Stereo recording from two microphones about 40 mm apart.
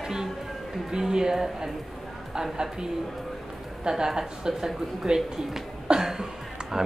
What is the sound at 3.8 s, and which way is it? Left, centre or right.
Speech, centre.